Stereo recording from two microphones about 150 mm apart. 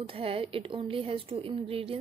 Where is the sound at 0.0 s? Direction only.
40° right (ahead or behind).